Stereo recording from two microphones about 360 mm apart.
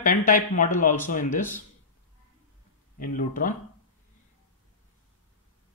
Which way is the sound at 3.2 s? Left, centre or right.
Left.